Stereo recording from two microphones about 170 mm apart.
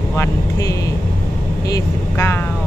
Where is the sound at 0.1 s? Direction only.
15° left (ahead or behind).